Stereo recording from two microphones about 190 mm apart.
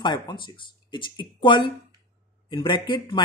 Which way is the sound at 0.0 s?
25° left (ahead or behind).